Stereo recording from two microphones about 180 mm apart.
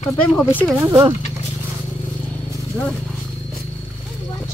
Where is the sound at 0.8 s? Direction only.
15° right (ahead or behind).